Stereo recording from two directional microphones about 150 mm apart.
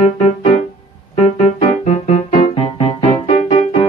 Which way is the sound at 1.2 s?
45° left (ahead or behind).